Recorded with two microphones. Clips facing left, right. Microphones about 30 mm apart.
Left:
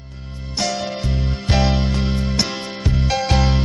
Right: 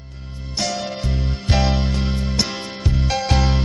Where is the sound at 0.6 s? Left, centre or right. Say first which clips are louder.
Left 2 dB; left.